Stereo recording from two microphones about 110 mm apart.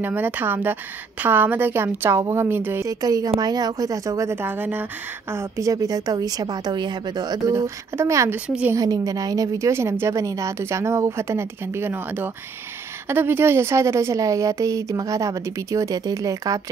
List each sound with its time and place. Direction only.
0.0 s a woman's voice: 15° right (ahead or behind)
2.9 s a woman's voice: 35° right (ahead or behind)